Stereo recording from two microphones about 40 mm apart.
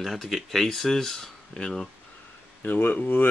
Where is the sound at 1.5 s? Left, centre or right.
Centre.